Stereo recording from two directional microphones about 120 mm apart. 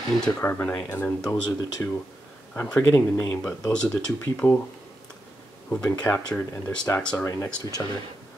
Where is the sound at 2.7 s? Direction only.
15° left (ahead or behind).